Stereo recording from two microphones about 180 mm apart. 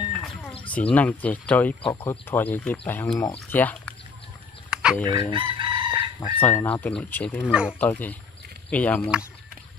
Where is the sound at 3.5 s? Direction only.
10° left (ahead or behind).